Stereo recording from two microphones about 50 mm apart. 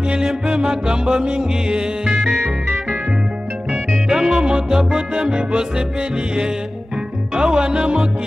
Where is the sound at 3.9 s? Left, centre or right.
Centre.